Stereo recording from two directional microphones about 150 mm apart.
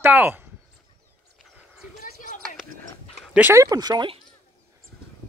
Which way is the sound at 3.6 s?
25° right (ahead or behind).